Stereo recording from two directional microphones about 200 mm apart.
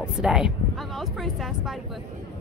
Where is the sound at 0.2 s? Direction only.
5° right (ahead or behind).